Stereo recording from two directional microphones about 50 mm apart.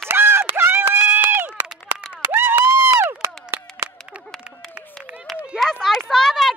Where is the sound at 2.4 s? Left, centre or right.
Right.